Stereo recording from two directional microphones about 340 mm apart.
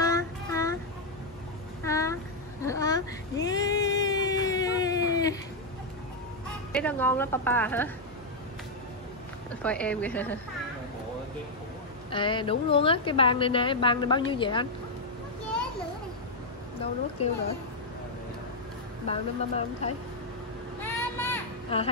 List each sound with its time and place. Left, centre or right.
0.0 s child singing: centre
1.9 s a sound: centre
6.7 s a woman's voice: centre
9.6 s a woman's voice: centre
12.1 s a woman's voice: centre
19.0 s speech: centre
20.8 s a sound: centre